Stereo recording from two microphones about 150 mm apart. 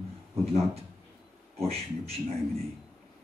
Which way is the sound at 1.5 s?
45° right (ahead or behind).